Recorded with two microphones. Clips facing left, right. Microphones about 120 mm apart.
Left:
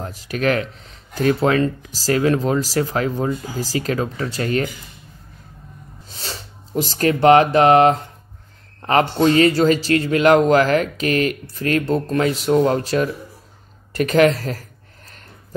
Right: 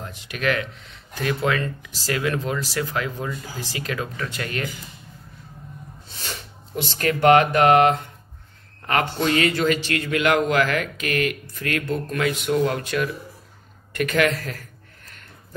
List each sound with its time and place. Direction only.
0.0 s speech: 40° left (ahead or behind)
6.0 s speech: 40° left (ahead or behind)
13.9 s a sound: 35° left (ahead or behind)